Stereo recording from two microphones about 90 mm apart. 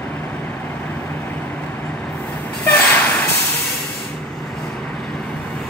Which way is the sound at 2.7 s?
15° left (ahead or behind).